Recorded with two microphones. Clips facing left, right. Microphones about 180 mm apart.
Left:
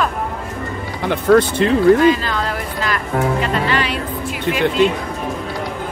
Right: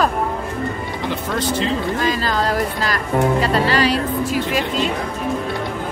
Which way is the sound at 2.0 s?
40° right (ahead or behind).